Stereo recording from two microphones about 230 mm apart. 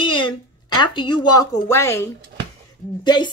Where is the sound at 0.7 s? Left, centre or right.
Left.